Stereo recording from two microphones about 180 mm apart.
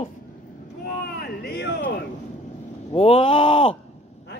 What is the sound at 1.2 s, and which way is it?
Speech, 65° left (ahead or behind).